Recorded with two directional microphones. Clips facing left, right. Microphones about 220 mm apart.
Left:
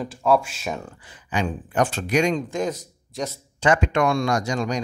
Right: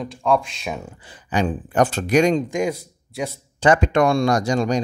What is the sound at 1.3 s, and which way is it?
Speech, 40° right (ahead or behind).